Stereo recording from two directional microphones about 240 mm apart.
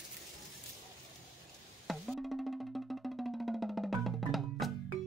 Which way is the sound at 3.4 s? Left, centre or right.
Centre.